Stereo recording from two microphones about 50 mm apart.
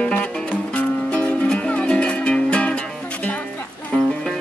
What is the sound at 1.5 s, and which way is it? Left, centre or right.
Music, centre.